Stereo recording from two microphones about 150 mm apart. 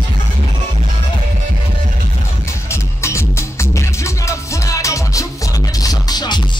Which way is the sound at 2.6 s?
20° left (ahead or behind).